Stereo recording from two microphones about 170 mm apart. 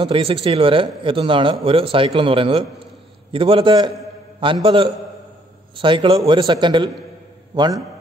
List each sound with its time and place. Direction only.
0.0 s a man's voice: 30° right (ahead or behind)
5.8 s a man's voice: 30° right (ahead or behind)